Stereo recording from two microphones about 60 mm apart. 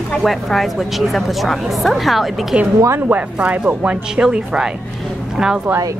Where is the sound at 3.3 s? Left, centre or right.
Right.